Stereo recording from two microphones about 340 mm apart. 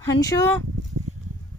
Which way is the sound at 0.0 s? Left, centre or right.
Centre.